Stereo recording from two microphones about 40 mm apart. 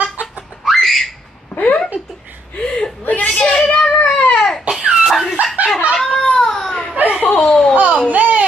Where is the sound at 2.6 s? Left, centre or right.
Left.